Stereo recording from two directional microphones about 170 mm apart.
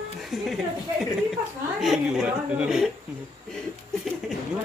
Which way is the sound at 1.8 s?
Centre (ahead or behind).